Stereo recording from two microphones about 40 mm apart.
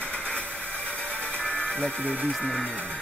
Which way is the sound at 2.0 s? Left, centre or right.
Left.